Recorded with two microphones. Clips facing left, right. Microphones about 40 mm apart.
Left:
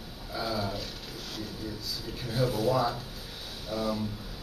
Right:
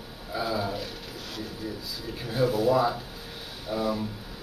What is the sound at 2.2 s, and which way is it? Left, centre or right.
A man's voice, centre.